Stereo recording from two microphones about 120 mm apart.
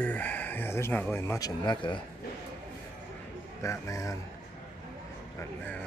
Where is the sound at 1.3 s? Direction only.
35° left (ahead or behind).